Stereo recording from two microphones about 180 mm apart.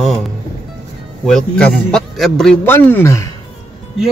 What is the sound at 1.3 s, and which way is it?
A man's voice, 5° left (ahead or behind).